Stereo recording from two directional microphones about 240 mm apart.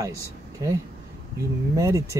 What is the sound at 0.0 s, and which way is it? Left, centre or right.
Speech, centre.